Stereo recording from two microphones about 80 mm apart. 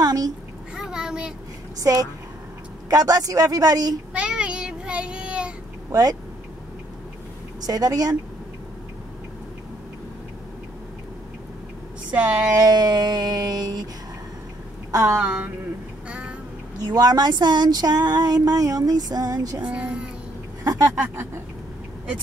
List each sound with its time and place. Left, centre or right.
0.0 s babbling: right
0.7 s child singing: centre
1.8 s speech: right
4.1 s child singing: centre
5.9 s speech: right
7.6 s speech: right
12.1 s speech: centre
12.5 s speech: right
14.9 s a woman's voice: right
15.1 s speech: centre
16.1 s quack: centre
16.9 s speech: right
19.6 s speech: centre
20.6 s speech: right